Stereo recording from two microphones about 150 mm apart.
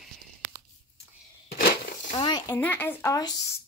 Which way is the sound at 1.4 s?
80° left.